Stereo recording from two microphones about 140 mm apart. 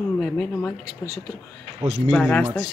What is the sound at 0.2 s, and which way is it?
Speech, 10° left (ahead or behind).